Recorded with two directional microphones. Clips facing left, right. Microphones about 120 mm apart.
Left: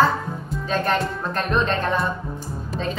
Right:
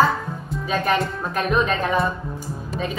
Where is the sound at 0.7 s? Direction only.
10° right (ahead or behind).